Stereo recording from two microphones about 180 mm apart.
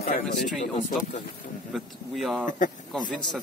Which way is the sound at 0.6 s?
45° left (ahead or behind).